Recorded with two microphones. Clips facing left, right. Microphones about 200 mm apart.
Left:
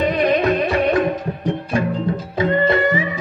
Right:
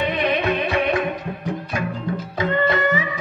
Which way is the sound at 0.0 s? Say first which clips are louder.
Left 4 dB; 40° left (ahead or behind).